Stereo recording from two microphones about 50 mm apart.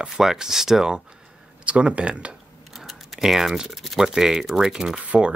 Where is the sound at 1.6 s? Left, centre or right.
Right.